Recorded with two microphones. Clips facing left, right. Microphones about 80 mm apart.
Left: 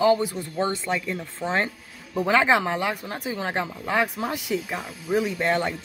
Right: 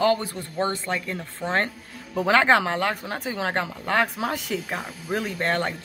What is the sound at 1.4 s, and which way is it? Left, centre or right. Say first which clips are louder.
Speech: right 1 dB; centre.